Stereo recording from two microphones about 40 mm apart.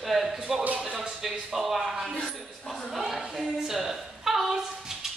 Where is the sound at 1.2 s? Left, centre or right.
Centre.